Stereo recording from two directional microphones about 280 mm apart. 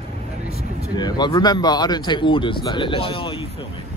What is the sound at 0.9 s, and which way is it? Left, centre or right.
Speech, centre.